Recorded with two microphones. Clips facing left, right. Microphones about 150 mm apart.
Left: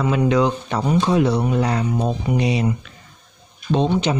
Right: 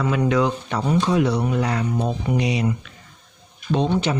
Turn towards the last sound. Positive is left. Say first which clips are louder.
# left 2 dB
turn(degrees=20)  # may be behind; listen again after turning